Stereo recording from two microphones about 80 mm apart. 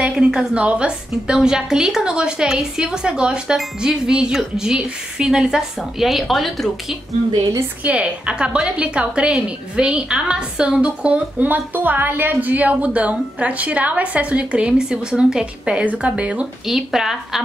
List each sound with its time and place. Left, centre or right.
0.2 s a woman's voice: centre
7.8 s a woman's voice: centre
16.6 s a woman's voice: centre